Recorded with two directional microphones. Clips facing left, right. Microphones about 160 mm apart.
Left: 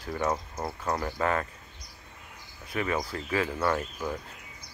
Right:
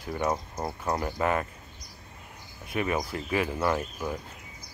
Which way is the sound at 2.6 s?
20° right (ahead or behind).